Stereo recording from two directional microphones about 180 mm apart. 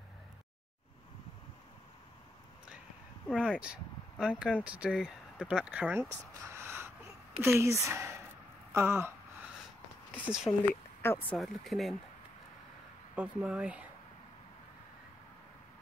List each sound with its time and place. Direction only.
3.3 s speech: 5° right (ahead or behind)
8.7 s gasp: 10° right (ahead or behind)
10.5 s speech: 20° left (ahead or behind)
11.3 s speech: centre (ahead or behind)
13.1 s speech: 5° right (ahead or behind)